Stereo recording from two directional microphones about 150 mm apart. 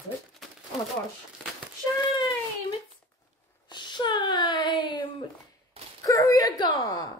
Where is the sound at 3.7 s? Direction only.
30° left (ahead or behind).